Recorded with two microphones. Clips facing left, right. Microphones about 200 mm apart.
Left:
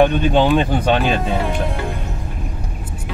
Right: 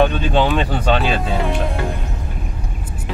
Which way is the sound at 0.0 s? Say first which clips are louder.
Left 2 dB; 15° left (ahead or behind).